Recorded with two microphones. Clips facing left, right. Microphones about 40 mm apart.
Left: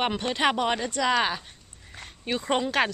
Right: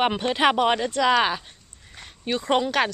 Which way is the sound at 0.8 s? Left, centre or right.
Centre.